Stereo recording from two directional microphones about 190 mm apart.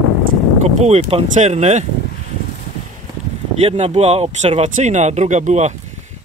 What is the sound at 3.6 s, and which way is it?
Speech, 35° right (ahead or behind).